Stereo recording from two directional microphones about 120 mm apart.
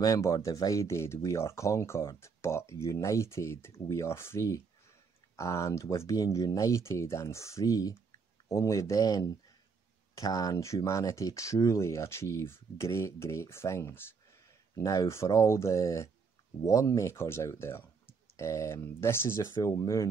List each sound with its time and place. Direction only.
0.0 s speech: 30° left (ahead or behind)